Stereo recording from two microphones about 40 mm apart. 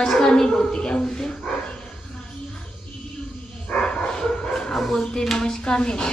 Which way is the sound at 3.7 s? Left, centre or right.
Left.